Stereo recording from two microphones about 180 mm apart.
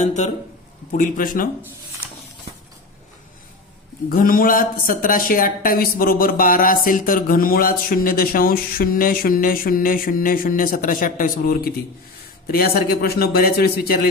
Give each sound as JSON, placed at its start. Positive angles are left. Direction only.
{"t": 0.0, "sound": "a man's voice", "side_deg": 40}
{"t": 4.1, "sound": "a man's voice", "side_deg": 50}